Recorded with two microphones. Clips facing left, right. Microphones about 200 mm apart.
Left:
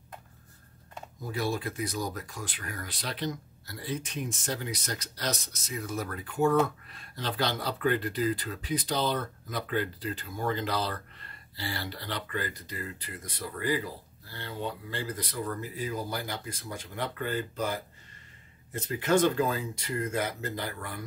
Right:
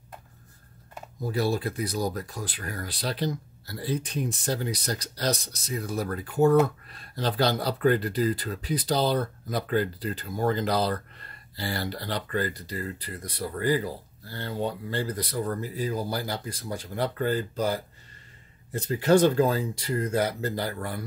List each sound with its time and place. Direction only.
1.2 s speech: 35° right (ahead or behind)